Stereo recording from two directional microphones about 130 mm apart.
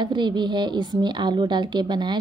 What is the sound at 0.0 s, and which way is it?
Speech, 35° right (ahead or behind).